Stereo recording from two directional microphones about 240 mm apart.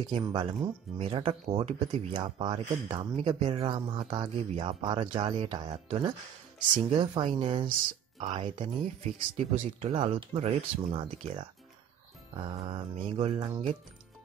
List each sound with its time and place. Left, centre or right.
0.0 s speech: centre
12.4 s speech: right